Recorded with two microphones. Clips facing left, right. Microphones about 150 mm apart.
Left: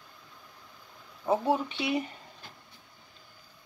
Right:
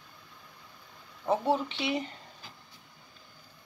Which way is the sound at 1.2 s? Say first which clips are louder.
Left 1 dB; 10° left (ahead or behind).